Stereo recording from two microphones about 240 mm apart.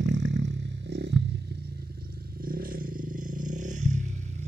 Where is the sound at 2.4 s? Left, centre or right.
Right.